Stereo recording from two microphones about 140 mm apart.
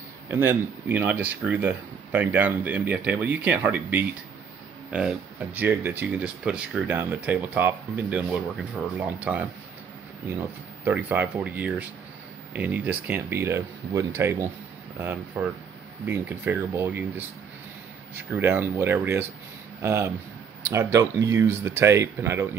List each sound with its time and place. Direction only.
0.3 s speech: 15° right (ahead or behind)
18.1 s speech: 15° right (ahead or behind)